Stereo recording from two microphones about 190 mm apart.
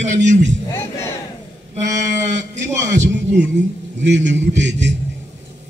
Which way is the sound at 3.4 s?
65° right (ahead or behind).